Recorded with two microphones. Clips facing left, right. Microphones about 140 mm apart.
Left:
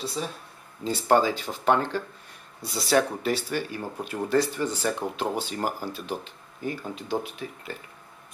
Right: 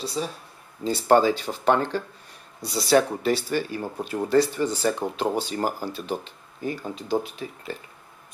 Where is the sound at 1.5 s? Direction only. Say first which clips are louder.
Right 3 dB; 10° right (ahead or behind).